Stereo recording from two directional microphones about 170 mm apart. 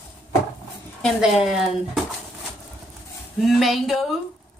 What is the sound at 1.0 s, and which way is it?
A woman's voice, centre (ahead or behind).